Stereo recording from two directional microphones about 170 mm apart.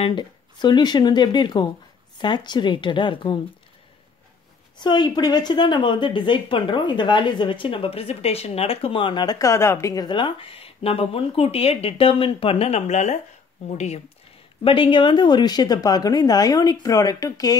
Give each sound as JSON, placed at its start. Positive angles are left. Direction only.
{"t": 0.0, "sound": "speech", "side_deg": 25}
{"t": 4.7, "sound": "speech", "side_deg": 25}